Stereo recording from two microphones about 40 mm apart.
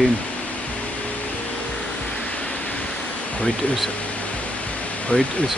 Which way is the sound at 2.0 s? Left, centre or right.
Left.